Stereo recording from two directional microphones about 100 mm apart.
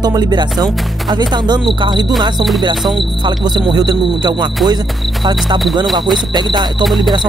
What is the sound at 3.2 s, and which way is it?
Speech, 50° right (ahead or behind).